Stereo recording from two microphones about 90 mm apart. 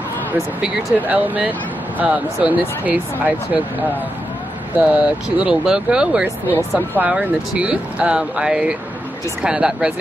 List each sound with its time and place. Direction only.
0.6 s speech: 15° right (ahead or behind)
4.7 s speech: 15° right (ahead or behind)